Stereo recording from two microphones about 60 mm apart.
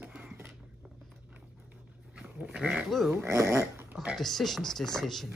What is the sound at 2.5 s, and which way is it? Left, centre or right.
Goat, centre.